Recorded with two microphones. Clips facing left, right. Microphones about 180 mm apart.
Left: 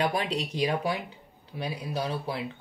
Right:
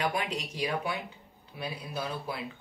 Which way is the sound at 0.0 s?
30° left (ahead or behind).